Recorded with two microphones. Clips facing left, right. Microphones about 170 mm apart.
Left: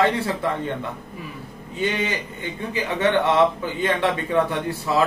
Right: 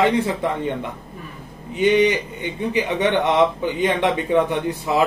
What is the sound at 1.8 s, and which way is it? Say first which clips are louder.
A man's voice: right 8 dB; 20° right (ahead or behind).